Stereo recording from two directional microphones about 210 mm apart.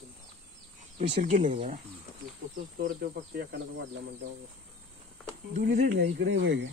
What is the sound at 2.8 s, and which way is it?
Speech, 50° right (ahead or behind).